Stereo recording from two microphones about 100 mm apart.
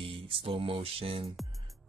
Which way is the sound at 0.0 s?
65° right (ahead or behind).